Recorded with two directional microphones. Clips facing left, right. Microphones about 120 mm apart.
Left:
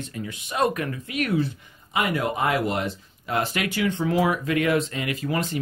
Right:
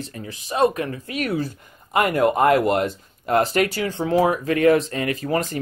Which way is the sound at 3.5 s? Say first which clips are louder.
Right 4 dB; 35° right (ahead or behind).